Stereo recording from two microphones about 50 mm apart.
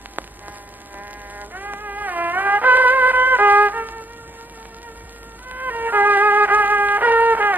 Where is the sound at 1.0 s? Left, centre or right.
Right.